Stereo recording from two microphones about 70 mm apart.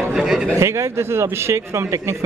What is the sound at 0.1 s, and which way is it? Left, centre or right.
Speech, centre.